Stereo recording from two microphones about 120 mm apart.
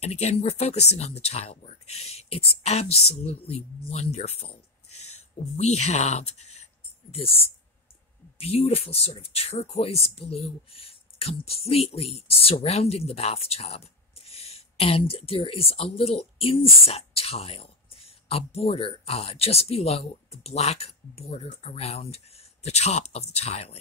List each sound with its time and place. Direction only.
0.0 s speech: 65° left (ahead or behind)